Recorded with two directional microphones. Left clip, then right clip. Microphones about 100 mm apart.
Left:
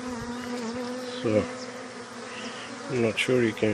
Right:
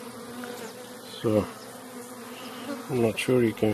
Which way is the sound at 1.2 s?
85° right.